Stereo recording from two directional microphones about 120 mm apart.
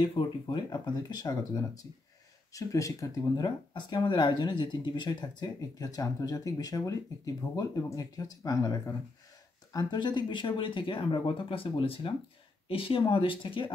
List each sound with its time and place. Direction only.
0.0 s speech: 45° left (ahead or behind)